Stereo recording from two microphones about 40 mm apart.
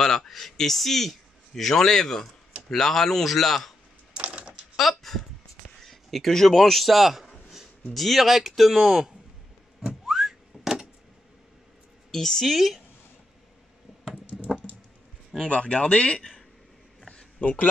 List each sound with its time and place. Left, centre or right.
0.0 s a man's voice: centre
4.1 s typing: right
4.7 s speech: centre
10.0 s whistling: centre
12.1 s a woman's voice: centre
12.5 s speech: centre
14.3 s computer keyboard: centre
15.5 s speech: left
17.4 s a man's voice: left